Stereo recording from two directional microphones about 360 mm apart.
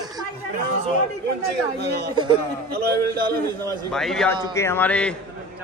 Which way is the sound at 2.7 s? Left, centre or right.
Right.